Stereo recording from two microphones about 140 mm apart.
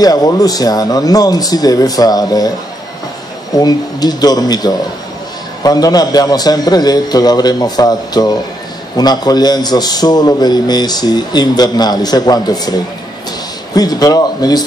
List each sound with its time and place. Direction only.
0.0 s a man's voice: 25° left (ahead or behind)
3.5 s a man's voice: 30° left (ahead or behind)
13.7 s a man's voice: 30° left (ahead or behind)